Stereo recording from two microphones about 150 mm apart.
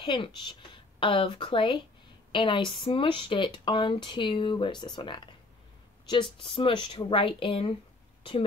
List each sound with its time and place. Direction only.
0.0 s speech: 30° left (ahead or behind)